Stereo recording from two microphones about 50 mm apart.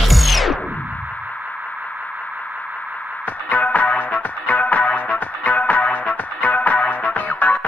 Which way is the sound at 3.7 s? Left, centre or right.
Left.